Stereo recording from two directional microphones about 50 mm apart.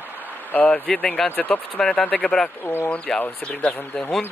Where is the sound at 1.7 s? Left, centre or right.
Centre.